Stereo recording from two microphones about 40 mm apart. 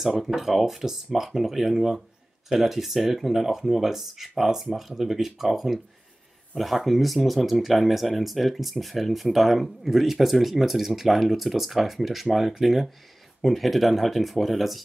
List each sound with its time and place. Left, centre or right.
0.4 s speech: centre